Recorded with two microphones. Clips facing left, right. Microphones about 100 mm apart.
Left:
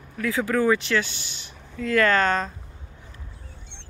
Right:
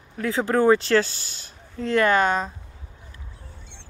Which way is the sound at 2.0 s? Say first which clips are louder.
Right 1 dB; 15° right (ahead or behind).